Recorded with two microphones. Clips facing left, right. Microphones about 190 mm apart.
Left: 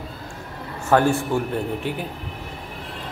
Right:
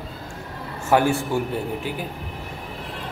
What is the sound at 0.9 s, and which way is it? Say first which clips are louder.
Speech: left 1 dB; 10° right (ahead or behind).